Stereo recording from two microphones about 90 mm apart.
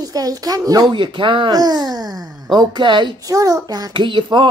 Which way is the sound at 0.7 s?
55° right (ahead or behind).